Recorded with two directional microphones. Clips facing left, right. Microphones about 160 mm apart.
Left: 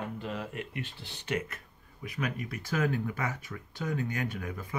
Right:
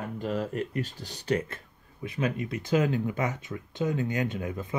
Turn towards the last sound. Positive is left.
turn(degrees=-25)  # may be behind; listen again after turning